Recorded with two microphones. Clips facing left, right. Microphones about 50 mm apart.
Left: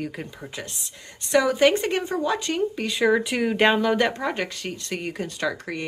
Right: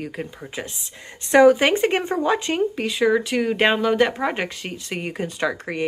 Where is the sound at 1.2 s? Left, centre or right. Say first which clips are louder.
Right 8 dB; right.